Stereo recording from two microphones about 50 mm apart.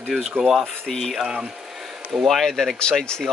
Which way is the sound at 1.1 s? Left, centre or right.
Centre.